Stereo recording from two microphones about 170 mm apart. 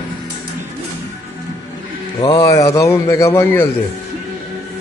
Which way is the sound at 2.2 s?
20° left (ahead or behind).